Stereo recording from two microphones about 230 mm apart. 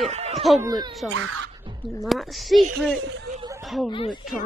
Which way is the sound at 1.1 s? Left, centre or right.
Right.